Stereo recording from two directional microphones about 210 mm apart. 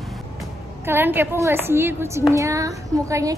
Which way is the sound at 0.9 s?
10° right (ahead or behind).